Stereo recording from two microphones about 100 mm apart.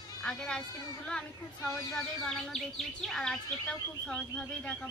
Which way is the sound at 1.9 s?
5° left (ahead or behind).